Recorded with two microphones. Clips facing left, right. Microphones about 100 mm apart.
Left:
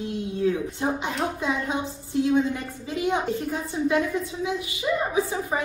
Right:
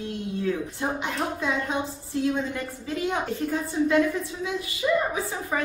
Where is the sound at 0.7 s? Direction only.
25° left (ahead or behind).